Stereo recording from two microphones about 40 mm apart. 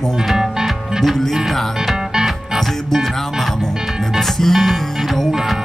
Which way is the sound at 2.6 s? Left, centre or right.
Centre.